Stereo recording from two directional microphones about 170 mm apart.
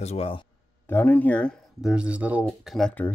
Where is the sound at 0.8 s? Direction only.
10° left (ahead or behind).